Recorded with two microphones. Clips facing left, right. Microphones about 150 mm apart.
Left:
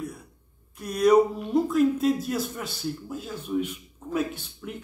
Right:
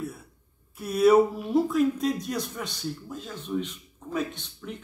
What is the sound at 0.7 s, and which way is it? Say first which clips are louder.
Speech: even; 5° right (ahead or behind).